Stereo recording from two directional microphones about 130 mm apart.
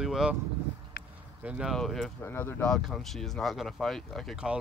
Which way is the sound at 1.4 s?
10° right (ahead or behind).